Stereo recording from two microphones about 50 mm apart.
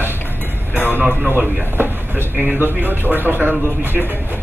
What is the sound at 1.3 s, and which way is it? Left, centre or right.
A man's voice, right.